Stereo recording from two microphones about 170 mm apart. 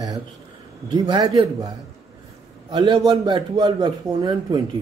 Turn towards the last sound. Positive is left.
turn(degrees=-25)  # may be behind; listen again after turning